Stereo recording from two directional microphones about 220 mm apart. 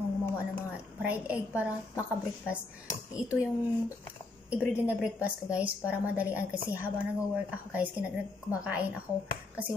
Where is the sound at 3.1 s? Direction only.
5° right (ahead or behind).